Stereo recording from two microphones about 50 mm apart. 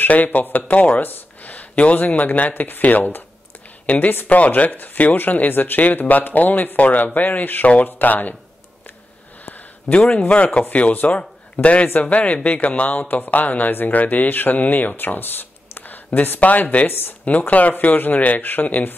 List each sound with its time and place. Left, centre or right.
0.0 s speech: left
9.8 s a man's voice: left